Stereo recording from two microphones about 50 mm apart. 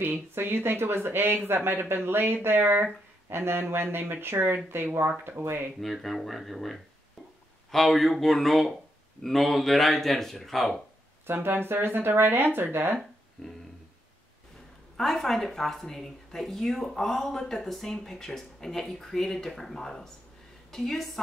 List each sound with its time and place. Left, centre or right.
0.0 s speech: right
5.8 s speech: centre
11.2 s speech: right
13.4 s speech: centre
15.0 s speech: centre